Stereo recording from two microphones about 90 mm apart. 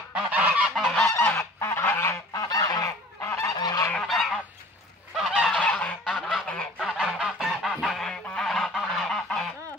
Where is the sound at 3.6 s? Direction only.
45° left (ahead or behind).